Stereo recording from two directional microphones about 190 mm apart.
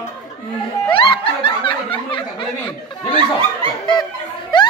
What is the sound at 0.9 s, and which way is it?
Music, 30° left (ahead or behind).